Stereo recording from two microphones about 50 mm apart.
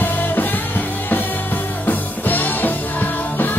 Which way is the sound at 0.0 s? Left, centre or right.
Left.